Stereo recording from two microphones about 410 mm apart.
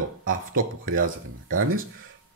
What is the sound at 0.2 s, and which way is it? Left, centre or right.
Speech, right.